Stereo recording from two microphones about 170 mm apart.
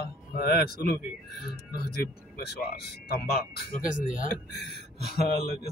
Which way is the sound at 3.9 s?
50° left (ahead or behind).